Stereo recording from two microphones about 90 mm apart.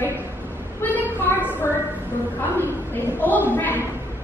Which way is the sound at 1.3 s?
30° left (ahead or behind).